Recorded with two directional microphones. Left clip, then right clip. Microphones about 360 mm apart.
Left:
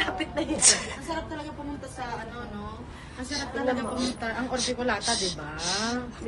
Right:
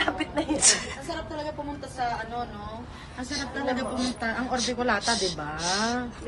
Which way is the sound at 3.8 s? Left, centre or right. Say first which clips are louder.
Right 1 dB; right.